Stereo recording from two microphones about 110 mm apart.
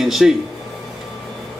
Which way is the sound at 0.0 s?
5° right (ahead or behind).